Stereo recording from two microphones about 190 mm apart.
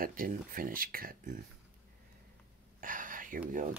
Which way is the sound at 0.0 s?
45° right (ahead or behind).